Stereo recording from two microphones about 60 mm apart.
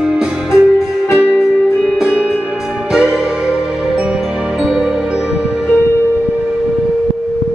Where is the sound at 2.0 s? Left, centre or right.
Centre.